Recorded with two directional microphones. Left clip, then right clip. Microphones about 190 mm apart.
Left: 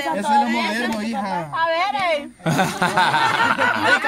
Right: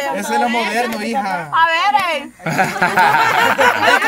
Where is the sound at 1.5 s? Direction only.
10° right (ahead or behind).